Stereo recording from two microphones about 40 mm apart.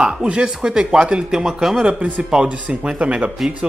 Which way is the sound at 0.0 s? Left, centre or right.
Centre.